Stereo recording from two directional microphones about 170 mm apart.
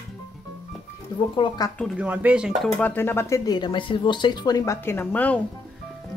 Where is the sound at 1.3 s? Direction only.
30° left (ahead or behind).